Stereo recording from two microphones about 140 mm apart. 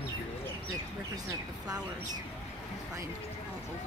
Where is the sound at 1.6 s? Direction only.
30° right (ahead or behind).